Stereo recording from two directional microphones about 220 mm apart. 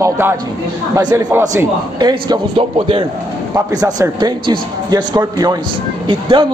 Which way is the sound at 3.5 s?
15° right (ahead or behind).